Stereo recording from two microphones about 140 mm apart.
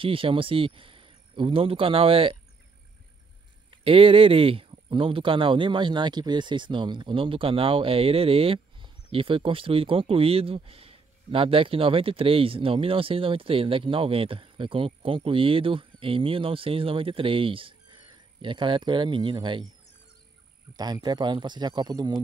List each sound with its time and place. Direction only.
0.0 s speech: 40° right (ahead or behind)
3.8 s speech: 40° right (ahead or behind)
20.7 s speech: 30° right (ahead or behind)